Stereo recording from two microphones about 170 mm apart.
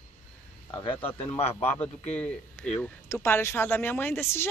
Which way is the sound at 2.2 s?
10° left (ahead or behind).